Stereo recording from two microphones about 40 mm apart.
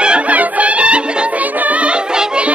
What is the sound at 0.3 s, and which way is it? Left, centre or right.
Music, right.